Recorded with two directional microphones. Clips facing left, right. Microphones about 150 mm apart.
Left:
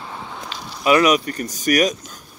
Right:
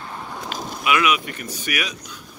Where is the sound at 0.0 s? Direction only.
5° left (ahead or behind).